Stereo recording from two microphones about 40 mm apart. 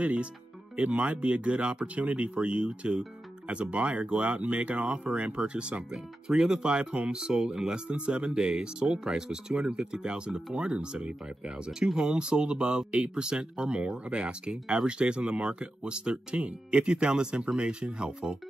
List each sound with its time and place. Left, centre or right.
0.0 s speech: right